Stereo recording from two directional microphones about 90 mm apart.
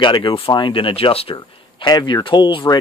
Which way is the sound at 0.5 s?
65° left (ahead or behind).